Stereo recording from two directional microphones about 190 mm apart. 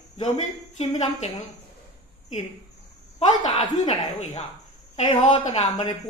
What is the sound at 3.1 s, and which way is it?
A child's voice, 35° left (ahead or behind).